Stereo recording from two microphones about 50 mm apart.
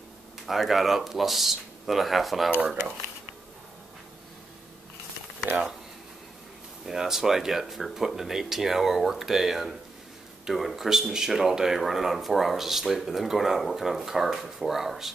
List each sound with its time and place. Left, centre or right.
0.5 s speech: centre
5.5 s speech: right
6.9 s speech: centre